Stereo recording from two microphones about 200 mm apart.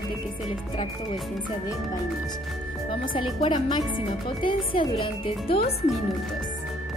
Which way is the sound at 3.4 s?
20° left (ahead or behind).